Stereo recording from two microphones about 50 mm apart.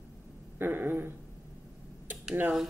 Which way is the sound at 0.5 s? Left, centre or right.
Right.